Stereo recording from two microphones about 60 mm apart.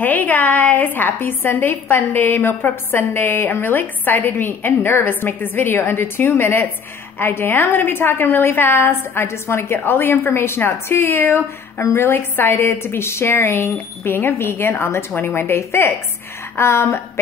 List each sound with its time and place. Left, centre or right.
0.0 s a woman's voice: left
11.8 s a woman's voice: left
12.1 s a woman's voice: left